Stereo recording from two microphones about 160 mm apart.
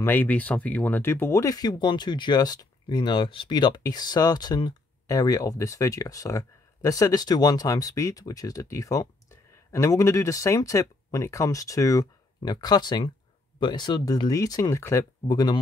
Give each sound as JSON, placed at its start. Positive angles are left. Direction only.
{"t": 0.0, "sound": "speech", "side_deg": 10}